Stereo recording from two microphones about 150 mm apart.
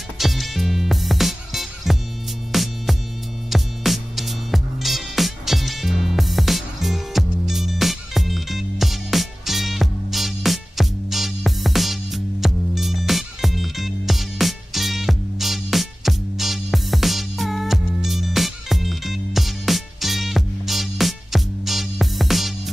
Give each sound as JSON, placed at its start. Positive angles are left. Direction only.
{"t": 0.2, "sound": "music", "side_deg": 0}